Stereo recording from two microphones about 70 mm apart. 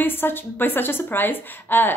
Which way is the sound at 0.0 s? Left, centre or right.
Left.